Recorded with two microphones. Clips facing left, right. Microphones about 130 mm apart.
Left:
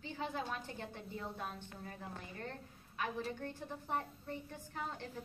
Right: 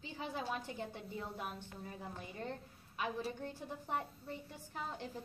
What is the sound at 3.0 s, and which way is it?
A woman's voice, 10° right (ahead or behind).